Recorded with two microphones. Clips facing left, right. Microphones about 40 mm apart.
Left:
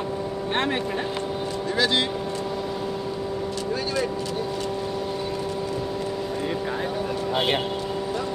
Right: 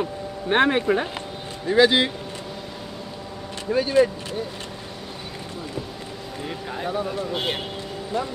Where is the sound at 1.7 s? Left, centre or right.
Centre.